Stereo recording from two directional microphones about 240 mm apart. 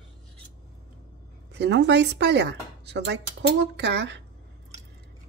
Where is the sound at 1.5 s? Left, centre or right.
Right.